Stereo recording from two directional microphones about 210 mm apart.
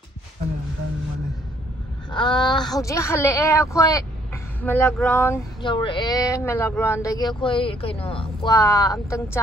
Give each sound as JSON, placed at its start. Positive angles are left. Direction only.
{"t": 2.0, "sound": "a woman's voice", "side_deg": 20}
{"t": 5.6, "sound": "speech", "side_deg": 20}